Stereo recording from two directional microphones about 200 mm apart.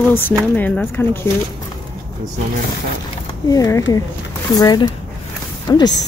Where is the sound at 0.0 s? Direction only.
10° left (ahead or behind).